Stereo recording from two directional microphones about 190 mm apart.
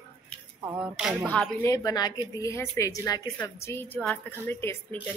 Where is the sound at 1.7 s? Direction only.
20° left (ahead or behind).